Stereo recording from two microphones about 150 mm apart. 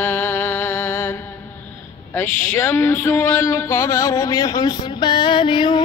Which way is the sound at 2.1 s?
15° left (ahead or behind).